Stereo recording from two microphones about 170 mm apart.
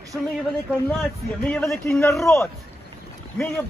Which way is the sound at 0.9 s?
5° left (ahead or behind).